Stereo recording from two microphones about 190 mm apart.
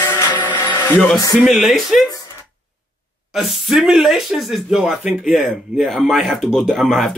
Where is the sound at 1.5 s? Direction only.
Centre (ahead or behind).